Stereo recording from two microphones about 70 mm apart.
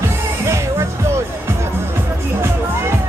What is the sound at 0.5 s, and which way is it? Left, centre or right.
Music, right.